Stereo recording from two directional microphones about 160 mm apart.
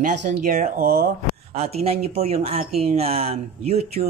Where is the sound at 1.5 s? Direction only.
40° right (ahead or behind).